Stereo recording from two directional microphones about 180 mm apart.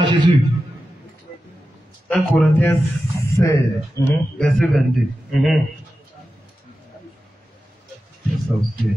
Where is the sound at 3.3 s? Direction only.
20° left (ahead or behind).